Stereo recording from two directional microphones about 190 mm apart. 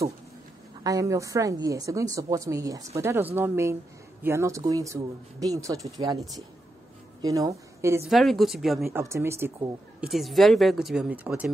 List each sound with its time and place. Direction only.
0.8 s speech: 15° right (ahead or behind)
7.2 s a woman's voice: 20° right (ahead or behind)
8.1 s a woman's voice: centre (ahead or behind)
8.9 s a woman's voice: 15° right (ahead or behind)